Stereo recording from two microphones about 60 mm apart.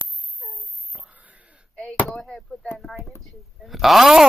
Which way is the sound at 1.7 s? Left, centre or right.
Centre.